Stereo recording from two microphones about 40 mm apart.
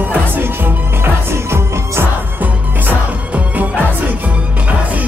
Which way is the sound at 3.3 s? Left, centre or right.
Right.